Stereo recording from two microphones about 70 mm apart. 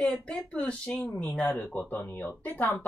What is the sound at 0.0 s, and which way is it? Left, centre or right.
Speech, centre.